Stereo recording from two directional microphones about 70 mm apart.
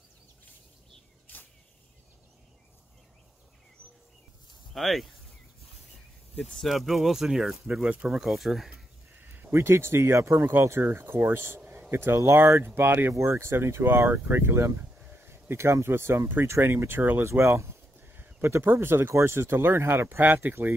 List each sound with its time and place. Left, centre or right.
4.7 s speech: centre
6.5 s speech: centre
8.1 s speech: centre
9.3 s speech: right
11.6 s a sound: right
11.9 s speech: right
17.9 s speech: right